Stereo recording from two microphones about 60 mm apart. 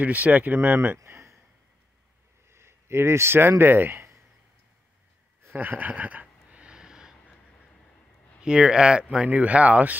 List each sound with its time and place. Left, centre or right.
0.0 s speech: right
1.0 s a sound: right
2.5 s a man's voice: right
5.5 s speech: right
6.5 s a sound: centre
8.4 s speech: centre